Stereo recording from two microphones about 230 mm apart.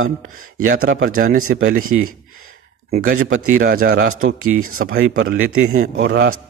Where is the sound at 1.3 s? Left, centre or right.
Right.